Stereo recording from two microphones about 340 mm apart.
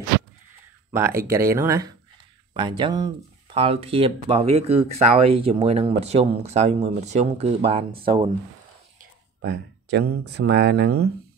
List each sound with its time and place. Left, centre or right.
0.9 s speech: centre
9.8 s speech: right